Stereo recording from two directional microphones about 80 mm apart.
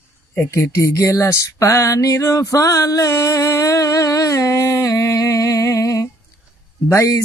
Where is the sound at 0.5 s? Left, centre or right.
Left.